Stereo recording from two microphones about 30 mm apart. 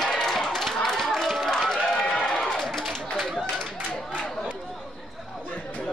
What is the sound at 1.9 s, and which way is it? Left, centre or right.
Run, left.